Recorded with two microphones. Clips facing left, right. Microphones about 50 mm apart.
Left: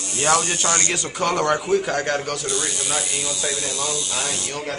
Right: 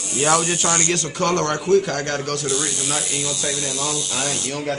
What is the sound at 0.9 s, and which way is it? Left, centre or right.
Speech, centre.